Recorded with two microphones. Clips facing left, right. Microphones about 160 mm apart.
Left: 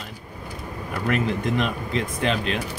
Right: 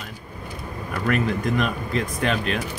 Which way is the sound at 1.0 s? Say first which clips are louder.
Right 1 dB; 25° left (ahead or behind).